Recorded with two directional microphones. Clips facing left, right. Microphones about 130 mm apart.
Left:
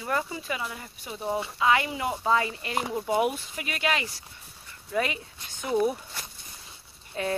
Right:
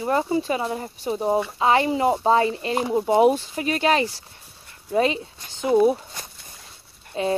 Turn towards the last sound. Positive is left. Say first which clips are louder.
# right 6 dB
turn(degrees=-20)  # may be behind; listen again after turning